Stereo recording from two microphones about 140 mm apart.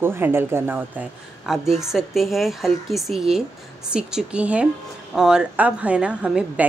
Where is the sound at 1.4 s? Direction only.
5° right (ahead or behind).